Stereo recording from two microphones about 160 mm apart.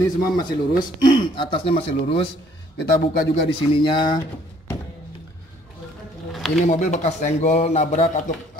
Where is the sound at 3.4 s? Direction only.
30° left (ahead or behind).